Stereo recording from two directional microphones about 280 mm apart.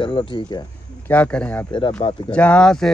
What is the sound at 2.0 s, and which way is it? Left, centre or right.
Speech, centre.